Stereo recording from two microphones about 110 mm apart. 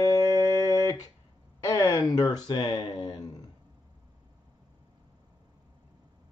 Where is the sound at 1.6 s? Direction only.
30° left (ahead or behind).